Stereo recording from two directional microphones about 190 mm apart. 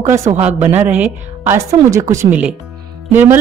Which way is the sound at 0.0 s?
15° right (ahead or behind).